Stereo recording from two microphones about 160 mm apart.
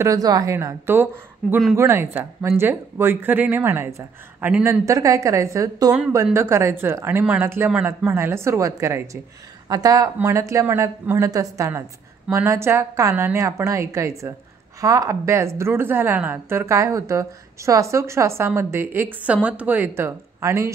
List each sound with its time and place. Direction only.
0.0 s a woman's voice: 20° right (ahead or behind)
1.4 s speech: centre (ahead or behind)
1.8 s a woman's voice: 15° right (ahead or behind)